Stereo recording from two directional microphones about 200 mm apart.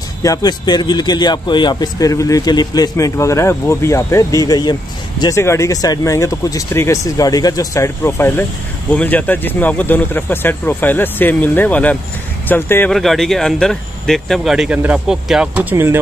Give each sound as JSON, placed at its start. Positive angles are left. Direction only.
{"t": 0.2, "sound": "a man's voice", "side_deg": 20}